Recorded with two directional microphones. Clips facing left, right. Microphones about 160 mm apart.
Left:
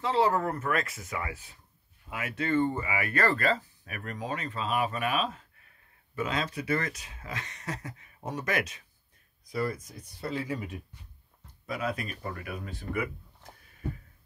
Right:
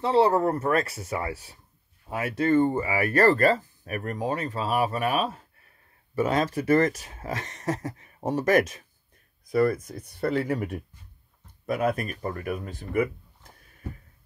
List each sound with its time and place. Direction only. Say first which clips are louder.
0.0 s speech: right 5 dB; 30° right (ahead or behind)
9.5 s speech: right 9 dB; 60° right (ahead or behind)